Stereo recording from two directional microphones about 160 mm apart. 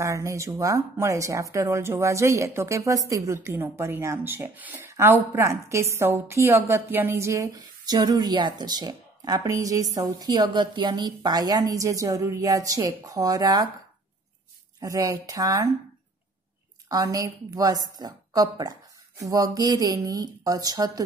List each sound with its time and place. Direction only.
0.0 s a woman's voice: 20° right (ahead or behind)
14.8 s a woman's voice: 20° right (ahead or behind)
16.9 s a woman's voice: 20° right (ahead or behind)